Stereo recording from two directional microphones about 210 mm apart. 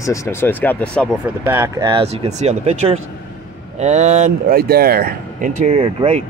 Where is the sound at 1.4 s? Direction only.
10° right (ahead or behind).